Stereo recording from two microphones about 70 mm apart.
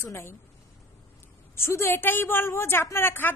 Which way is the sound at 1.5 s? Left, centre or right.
Left.